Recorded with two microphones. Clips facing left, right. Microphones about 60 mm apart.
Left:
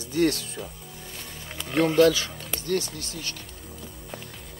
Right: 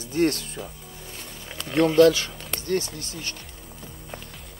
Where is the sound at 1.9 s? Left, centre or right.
Right.